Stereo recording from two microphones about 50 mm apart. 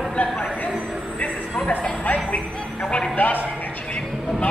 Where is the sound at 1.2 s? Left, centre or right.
Left.